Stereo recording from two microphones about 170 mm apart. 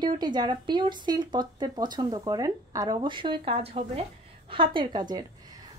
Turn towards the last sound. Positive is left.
turn(degrees=-25)  # may be behind; listen again after turning